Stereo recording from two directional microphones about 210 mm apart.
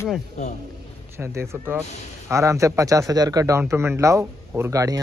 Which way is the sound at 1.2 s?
10° right (ahead or behind).